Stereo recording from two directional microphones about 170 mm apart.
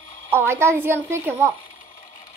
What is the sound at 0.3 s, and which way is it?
Speech, 15° right (ahead or behind).